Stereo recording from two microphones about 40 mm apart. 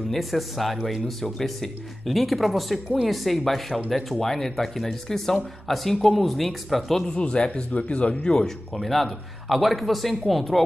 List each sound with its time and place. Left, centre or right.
0.1 s speech: centre
7.1 s speech: left
8.1 s speech: centre
8.5 s speech: centre